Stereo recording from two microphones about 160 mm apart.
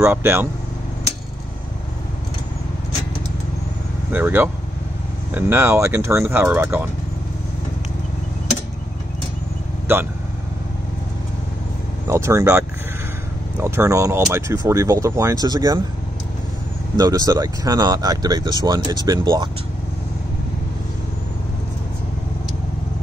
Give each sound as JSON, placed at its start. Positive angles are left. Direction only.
{"t": 0.0, "sound": "speech", "side_deg": -15}
{"t": 4.1, "sound": "speech", "side_deg": -10}
{"t": 12.1, "sound": "speech", "side_deg": -15}
{"t": 16.9, "sound": "speech", "side_deg": -25}